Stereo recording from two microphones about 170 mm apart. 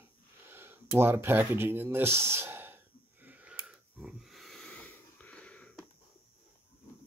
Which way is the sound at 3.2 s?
10° right (ahead or behind).